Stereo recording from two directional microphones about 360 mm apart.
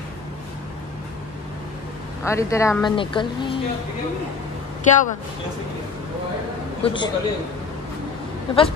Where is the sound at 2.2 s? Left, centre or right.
Centre.